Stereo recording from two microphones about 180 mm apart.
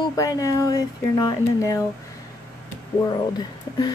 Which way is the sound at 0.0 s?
20° left (ahead or behind).